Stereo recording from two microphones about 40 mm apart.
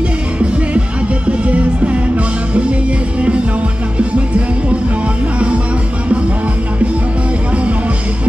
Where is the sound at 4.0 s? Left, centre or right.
Right.